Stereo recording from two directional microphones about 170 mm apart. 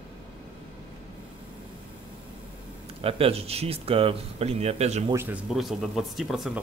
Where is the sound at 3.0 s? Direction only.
35° right (ahead or behind).